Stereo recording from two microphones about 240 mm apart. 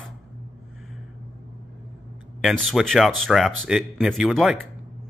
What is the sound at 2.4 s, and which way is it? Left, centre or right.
Speech, centre.